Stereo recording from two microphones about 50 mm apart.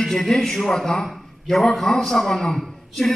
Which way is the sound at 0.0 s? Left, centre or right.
Centre.